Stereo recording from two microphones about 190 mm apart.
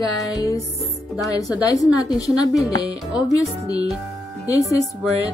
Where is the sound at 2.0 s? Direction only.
5° right (ahead or behind).